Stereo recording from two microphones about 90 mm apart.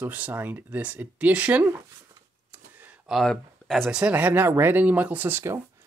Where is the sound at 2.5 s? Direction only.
20° right (ahead or behind).